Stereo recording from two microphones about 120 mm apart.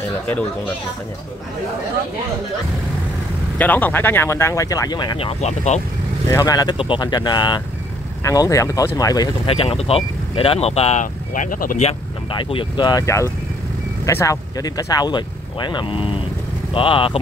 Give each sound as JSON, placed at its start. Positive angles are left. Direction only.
{"t": 3.5, "sound": "speech", "side_deg": 15}
{"t": 5.2, "sound": "speech", "side_deg": 70}
{"t": 6.2, "sound": "speech", "side_deg": 25}
{"t": 8.2, "sound": "speech", "side_deg": 25}
{"t": 9.5, "sound": "speech", "side_deg": 50}
{"t": 12.3, "sound": "speech", "side_deg": 45}